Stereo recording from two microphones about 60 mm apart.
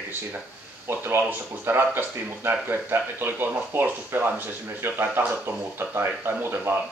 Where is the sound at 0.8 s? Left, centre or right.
Right.